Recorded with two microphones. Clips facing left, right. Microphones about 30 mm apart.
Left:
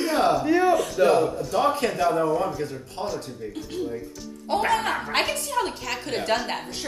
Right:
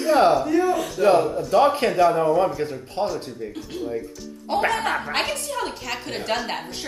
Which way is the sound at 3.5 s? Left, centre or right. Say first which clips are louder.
Right 1 dB; centre.